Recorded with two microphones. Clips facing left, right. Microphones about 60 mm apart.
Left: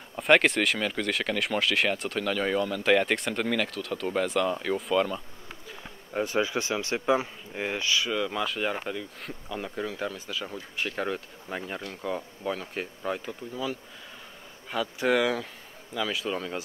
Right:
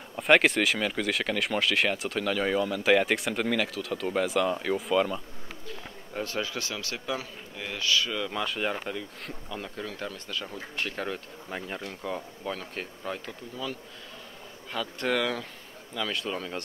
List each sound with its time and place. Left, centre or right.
0.1 s speech: centre
5.7 s speech: centre